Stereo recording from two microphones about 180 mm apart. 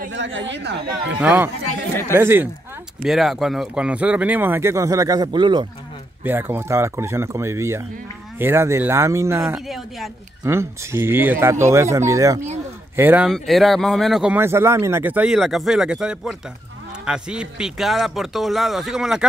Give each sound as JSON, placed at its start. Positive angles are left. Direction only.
{"t": 0.1, "sound": "speech", "side_deg": -90}
{"t": 1.2, "sound": "speech", "side_deg": -10}
{"t": 3.0, "sound": "speech", "side_deg": 0}
{"t": 6.2, "sound": "speech", "side_deg": -10}
{"t": 9.7, "sound": "speech", "side_deg": 0}
{"t": 10.4, "sound": "speech", "side_deg": -15}
{"t": 13.3, "sound": "speech", "side_deg": 0}